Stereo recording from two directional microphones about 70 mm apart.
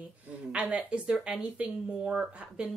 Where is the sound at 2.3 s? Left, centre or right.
Centre.